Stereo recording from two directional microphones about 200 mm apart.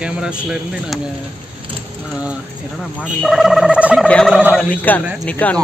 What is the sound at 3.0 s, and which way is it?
Speech, centre (ahead or behind).